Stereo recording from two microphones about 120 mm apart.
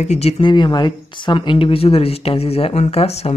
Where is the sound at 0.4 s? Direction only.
40° left (ahead or behind).